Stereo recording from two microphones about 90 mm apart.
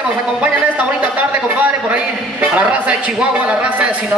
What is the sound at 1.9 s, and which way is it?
A woman's voice, 15° right (ahead or behind).